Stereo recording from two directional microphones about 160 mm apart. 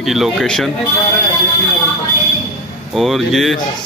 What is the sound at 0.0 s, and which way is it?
Speech, centre (ahead or behind).